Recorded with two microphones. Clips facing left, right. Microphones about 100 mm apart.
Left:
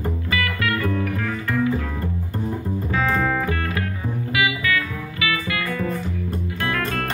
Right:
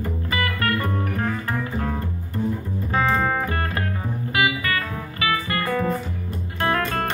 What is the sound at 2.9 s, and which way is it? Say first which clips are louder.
Music: right 1 dB; 35° right (ahead or behind).